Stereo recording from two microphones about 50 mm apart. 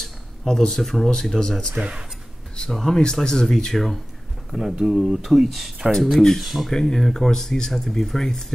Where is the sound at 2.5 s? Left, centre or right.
Centre.